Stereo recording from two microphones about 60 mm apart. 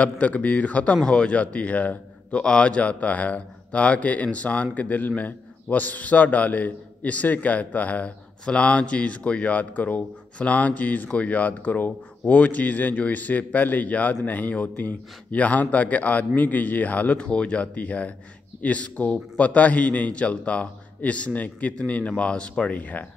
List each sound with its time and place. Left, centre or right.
0.0 s a man's voice: left